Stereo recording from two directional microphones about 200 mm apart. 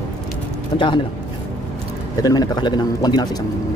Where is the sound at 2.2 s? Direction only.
20° left (ahead or behind).